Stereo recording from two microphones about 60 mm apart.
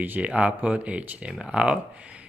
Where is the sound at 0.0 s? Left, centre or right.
Right.